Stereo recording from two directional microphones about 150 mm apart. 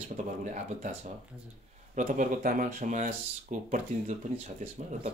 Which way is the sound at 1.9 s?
60° right (ahead or behind).